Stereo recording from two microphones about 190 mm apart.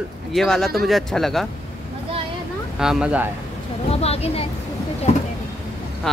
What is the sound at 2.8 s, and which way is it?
Speech, 5° right (ahead or behind).